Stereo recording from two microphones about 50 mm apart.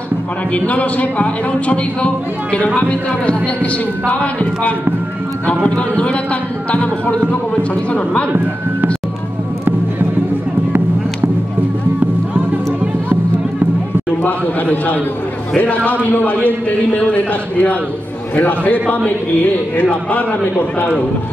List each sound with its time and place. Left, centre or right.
0.7 s a man's voice: left
14.2 s a sound: left
15.5 s a man's voice: left